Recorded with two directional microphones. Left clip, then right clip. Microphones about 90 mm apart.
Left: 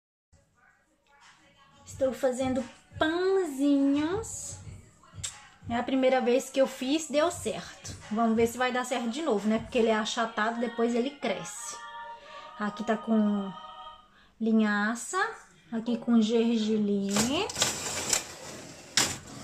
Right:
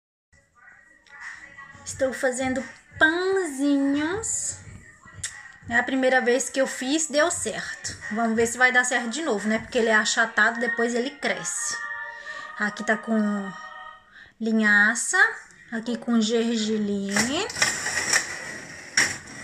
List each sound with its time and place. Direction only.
2.0 s speech: 5° right (ahead or behind)
17.7 s printer: 15° left (ahead or behind)
18.1 s a sound: 10° left (ahead or behind)